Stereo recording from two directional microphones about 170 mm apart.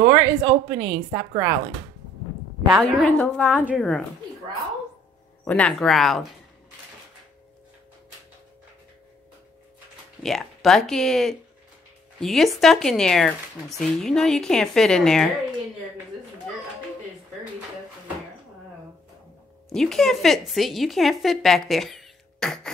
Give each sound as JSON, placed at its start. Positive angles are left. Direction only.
{"t": 0.0, "sound": "a woman's voice", "side_deg": -15}
{"t": 2.8, "sound": "a woman's voice", "side_deg": 10}
{"t": 3.5, "sound": "a woman's voice", "side_deg": -10}
{"t": 5.4, "sound": "speech", "side_deg": 5}
{"t": 10.2, "sound": "speech", "side_deg": 0}
{"t": 19.7, "sound": "speech", "side_deg": 5}